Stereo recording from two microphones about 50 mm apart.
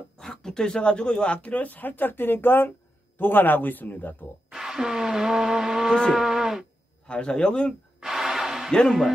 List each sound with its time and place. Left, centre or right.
0.2 s a man's voice: centre; by 4.3 s left
4.5 s vehicle: centre
6.1 s livestock: centre
7.1 s speech: centre
8.0 s a sound: centre